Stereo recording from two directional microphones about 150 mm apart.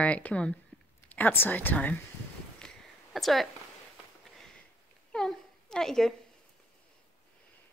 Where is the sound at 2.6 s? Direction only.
5° left (ahead or behind).